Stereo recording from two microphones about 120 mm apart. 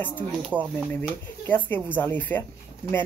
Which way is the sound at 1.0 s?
15° left (ahead or behind).